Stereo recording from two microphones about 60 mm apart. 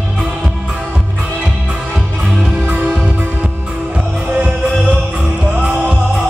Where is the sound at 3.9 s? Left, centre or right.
Centre.